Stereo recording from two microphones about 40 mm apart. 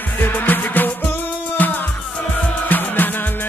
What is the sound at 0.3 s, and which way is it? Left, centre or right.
Music, left.